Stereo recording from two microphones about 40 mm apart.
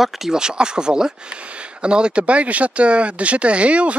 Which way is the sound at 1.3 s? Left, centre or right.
Right.